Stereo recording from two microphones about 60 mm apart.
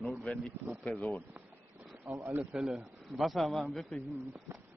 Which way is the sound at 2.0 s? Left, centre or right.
Right.